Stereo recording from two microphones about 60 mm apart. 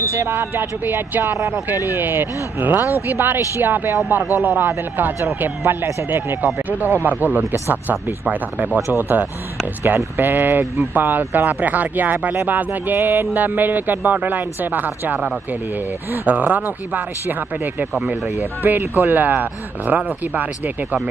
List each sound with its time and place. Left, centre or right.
0.3 s speech: right